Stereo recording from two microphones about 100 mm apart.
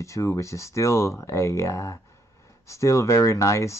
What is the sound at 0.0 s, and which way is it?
Speech, 30° left (ahead or behind).